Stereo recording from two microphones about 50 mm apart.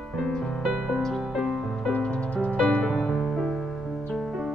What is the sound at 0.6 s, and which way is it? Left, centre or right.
Music, centre.